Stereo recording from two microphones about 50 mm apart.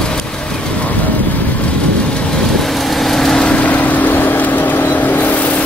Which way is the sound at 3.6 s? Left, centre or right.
Left.